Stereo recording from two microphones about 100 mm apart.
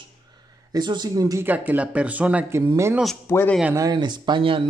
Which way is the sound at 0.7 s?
45° right (ahead or behind).